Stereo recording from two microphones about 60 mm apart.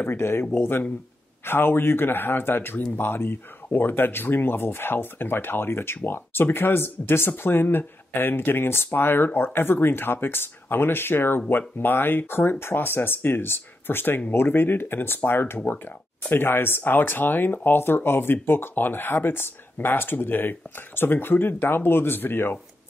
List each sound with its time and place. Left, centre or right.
0.0 s speech: left